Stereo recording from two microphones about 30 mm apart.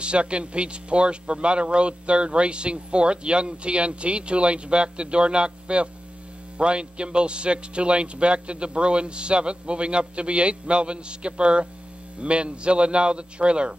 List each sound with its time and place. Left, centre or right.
0.0 s speech: right